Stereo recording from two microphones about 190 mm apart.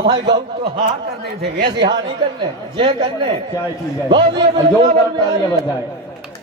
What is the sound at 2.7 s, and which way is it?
A man's voice, 25° right (ahead or behind).